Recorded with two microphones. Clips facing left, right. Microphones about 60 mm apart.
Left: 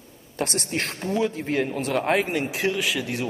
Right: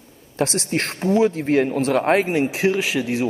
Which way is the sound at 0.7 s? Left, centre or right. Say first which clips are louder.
Right 8 dB; right.